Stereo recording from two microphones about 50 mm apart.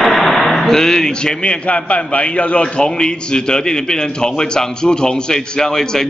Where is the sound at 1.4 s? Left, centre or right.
Left.